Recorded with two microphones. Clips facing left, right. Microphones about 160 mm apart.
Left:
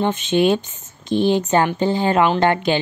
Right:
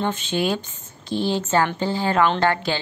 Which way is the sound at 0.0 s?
20° left (ahead or behind).